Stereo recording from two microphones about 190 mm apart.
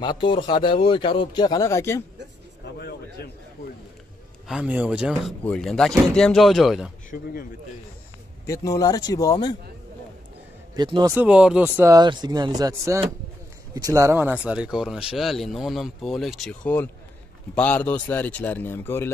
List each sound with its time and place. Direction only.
0.0 s speech: 25° left (ahead or behind)
2.8 s a sound: 55° left (ahead or behind)
4.5 s speech: 5° right (ahead or behind)
7.1 s speech: 55° left (ahead or behind)
8.5 s speech: 20° left (ahead or behind)
10.8 s speech: 20° right (ahead or behind)
11.1 s a man's voice: 5° right (ahead or behind); by 19.1 s 10° left (ahead or behind)